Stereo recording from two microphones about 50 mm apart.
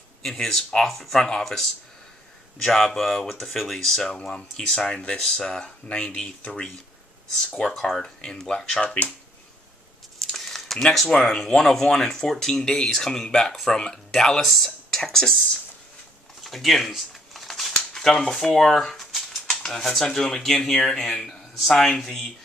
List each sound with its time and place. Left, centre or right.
0.2 s speech: centre
8.8 s speech: left
10.2 s a sound: centre
11.1 s speech: centre
16.4 s a sound: centre
19.5 s speech: centre